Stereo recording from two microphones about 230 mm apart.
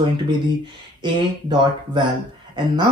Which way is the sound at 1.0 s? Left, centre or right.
Centre.